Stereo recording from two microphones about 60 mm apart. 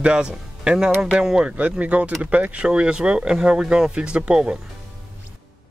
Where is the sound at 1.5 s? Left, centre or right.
Right.